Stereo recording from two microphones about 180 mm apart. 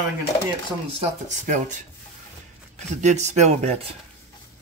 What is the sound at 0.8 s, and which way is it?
Speech, 35° right (ahead or behind).